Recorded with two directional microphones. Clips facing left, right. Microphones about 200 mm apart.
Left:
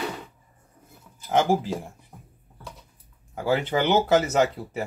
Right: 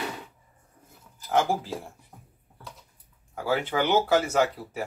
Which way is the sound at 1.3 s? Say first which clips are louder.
Left 3 dB; 20° left (ahead or behind).